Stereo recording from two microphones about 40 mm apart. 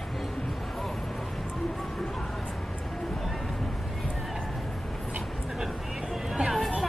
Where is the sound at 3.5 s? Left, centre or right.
Centre.